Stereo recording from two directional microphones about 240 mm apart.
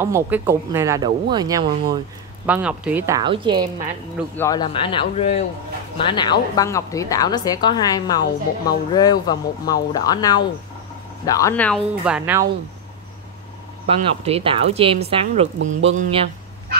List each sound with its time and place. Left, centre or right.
0.0 s speech: centre
2.4 s speech: centre
4.4 s a woman's voice: centre
12.0 s speech: centre
13.8 s speech: right
15.6 s speech: right
16.0 s speech: right